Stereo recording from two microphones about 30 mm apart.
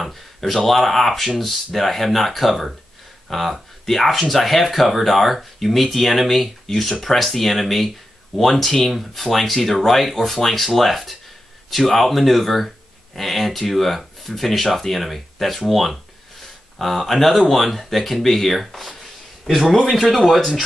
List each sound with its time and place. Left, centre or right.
0.1 s speech: centre
8.9 s speech: centre
11.7 s speech: centre
12.0 s speech: centre
16.7 s speech: centre